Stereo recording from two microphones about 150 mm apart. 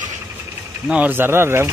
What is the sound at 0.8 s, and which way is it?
Speech, 10° right (ahead or behind).